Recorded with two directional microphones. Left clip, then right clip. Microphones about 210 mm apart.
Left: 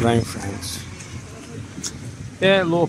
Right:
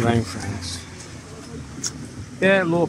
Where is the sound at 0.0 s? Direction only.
15° left (ahead or behind).